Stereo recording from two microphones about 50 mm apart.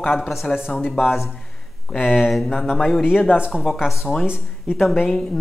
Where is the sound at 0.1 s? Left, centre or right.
Centre.